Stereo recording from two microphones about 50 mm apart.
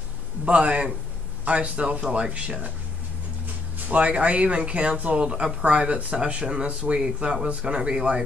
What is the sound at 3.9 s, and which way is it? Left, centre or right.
Speech, right.